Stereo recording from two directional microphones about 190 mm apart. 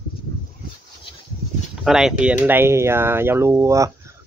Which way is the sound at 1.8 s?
5° right (ahead or behind).